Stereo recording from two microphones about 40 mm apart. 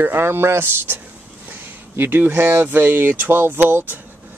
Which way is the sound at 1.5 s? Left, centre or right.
Right.